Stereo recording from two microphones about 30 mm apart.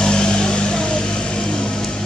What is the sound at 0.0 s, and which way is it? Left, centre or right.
Vehicle, left.